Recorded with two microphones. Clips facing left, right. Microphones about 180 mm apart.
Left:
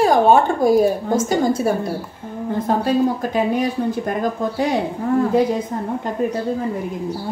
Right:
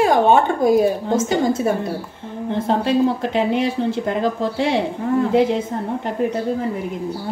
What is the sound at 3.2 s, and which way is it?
Speech, 25° right (ahead or behind).